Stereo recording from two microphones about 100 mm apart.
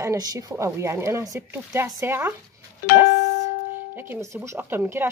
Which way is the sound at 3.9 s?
20° right (ahead or behind).